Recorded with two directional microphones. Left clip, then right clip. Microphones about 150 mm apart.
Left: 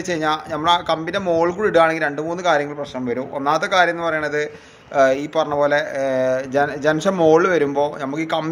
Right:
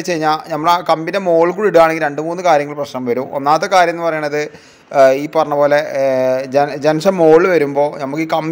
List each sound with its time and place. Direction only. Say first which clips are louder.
0.1 s speech: right 5 dB; 25° right (ahead or behind)